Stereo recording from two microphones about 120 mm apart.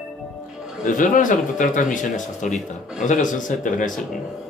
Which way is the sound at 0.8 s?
90° left.